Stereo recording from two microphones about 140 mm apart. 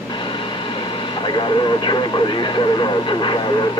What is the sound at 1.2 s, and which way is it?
Speech, 35° left (ahead or behind).